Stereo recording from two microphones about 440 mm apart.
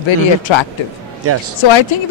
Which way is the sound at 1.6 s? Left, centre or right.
Left.